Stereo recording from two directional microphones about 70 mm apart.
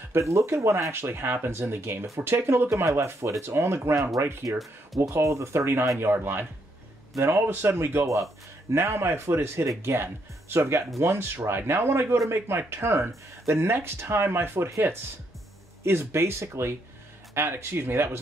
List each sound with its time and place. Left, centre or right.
0.1 s speech: right
15.8 s speech: right